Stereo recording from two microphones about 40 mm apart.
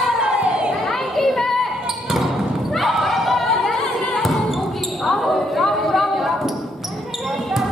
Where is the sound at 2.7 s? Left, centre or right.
Centre.